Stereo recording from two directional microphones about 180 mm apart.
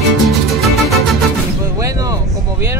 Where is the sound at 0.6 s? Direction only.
Centre (ahead or behind).